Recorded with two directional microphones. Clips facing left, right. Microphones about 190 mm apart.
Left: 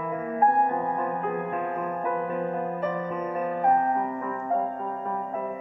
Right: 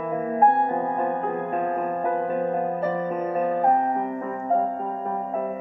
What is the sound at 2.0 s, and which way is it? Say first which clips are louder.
Music: right 3 dB; 30° right (ahead or behind).